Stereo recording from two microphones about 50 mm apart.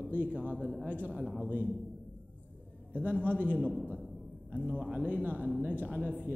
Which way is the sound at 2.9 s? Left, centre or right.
Right.